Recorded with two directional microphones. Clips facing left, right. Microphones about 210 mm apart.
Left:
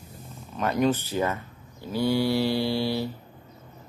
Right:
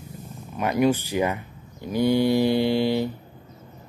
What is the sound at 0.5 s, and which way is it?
Speech, 10° right (ahead or behind).